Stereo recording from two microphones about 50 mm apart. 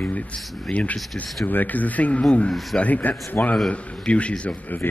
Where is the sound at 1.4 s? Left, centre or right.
Left.